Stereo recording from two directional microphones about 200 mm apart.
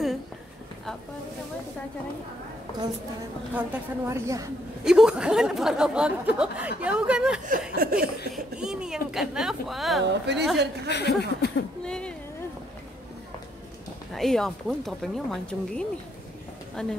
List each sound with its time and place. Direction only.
3.5 s a woman's voice: 10° right (ahead or behind)
4.8 s speech: 5° right (ahead or behind)
7.7 s speech: 45° right (ahead or behind)
8.3 s speech: 5° right (ahead or behind)
10.0 s a woman's voice: 55° right (ahead or behind)
10.9 s speech: 55° left (ahead or behind)
11.8 s speech: 5° left (ahead or behind)
14.1 s speech: centre (ahead or behind)